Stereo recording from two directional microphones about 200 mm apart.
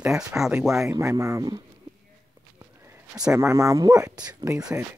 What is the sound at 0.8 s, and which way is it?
Speech, 15° right (ahead or behind).